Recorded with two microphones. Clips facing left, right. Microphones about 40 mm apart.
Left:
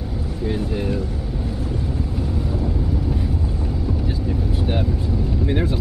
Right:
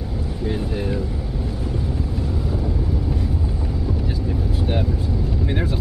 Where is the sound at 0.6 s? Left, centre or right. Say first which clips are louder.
Left 1 dB; centre.